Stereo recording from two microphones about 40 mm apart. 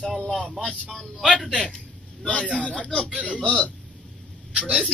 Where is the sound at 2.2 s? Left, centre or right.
Left.